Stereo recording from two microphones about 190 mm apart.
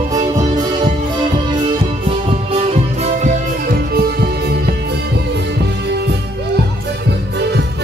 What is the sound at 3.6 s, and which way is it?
Music, 55° right (ahead or behind).